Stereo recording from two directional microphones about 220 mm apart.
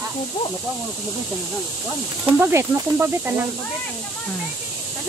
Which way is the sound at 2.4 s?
10° right (ahead or behind).